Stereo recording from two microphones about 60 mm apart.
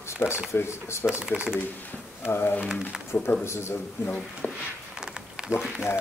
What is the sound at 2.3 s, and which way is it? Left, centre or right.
Speech, left.